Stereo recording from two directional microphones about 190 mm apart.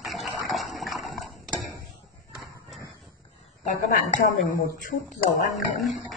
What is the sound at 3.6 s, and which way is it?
Speech, 45° left (ahead or behind).